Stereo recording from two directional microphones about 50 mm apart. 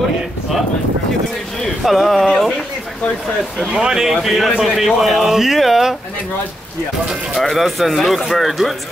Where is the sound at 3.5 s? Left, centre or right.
Centre.